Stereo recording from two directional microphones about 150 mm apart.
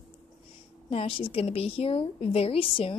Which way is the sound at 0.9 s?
40° left (ahead or behind).